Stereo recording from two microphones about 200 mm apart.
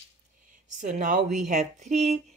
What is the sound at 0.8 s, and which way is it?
Speech, 40° right (ahead or behind).